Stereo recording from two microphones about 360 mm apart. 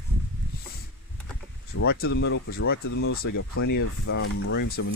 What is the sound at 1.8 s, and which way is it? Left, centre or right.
Speech, left.